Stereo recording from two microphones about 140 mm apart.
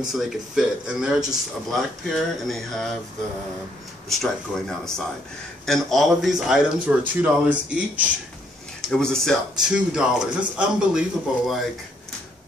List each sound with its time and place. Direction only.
0.0 s speech: 5° right (ahead or behind)
4.1 s speech: centre (ahead or behind)
8.8 s speech: 5° left (ahead or behind)